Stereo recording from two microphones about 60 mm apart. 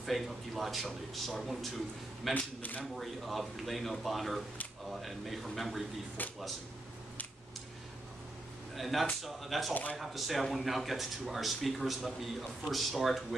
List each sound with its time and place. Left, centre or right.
0.0 s speech: centre
2.3 s speech: left
2.8 s speech: centre
8.7 s speech: centre